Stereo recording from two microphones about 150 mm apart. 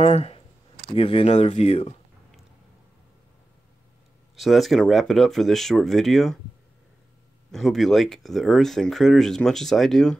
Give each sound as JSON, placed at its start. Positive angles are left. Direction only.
{"t": 0.0, "sound": "speech", "side_deg": 45}
{"t": 4.4, "sound": "speech", "side_deg": 0}
{"t": 7.5, "sound": "speech", "side_deg": 0}